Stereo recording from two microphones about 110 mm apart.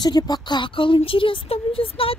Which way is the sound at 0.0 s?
40° left (ahead or behind).